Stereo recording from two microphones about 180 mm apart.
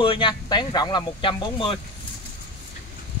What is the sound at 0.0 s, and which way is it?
Speech, 30° left (ahead or behind).